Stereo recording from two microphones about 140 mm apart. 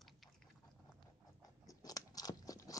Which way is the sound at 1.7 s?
25° left (ahead or behind).